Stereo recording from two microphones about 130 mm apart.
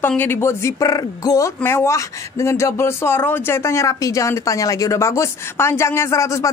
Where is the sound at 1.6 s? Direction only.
20° left (ahead or behind).